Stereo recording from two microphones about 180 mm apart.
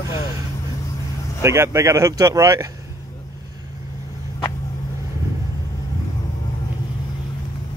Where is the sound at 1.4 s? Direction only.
15° right (ahead or behind).